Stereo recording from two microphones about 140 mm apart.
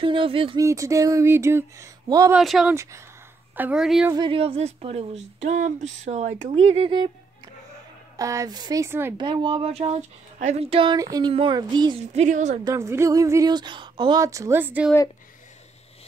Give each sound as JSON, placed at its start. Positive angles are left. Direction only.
{"t": 0.0, "sound": "speech", "side_deg": -40}
{"t": 0.6, "sound": "speech", "side_deg": -20}
{"t": 2.3, "sound": "speech", "side_deg": -5}
{"t": 2.7, "sound": "speech", "side_deg": -20}
{"t": 3.5, "sound": "speech", "side_deg": -10}
{"t": 4.1, "sound": "speech", "side_deg": -35}
{"t": 8.2, "sound": "speech", "side_deg": -25}
{"t": 9.1, "sound": "speech", "side_deg": -35}
{"t": 11.0, "sound": "speech", "side_deg": -25}
{"t": 12.0, "sound": "speech", "side_deg": -55}
{"t": 12.6, "sound": "speech", "side_deg": -20}
{"t": 14.2, "sound": "speech", "side_deg": -25}